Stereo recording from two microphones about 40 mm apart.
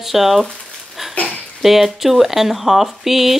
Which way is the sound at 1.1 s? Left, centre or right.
Left.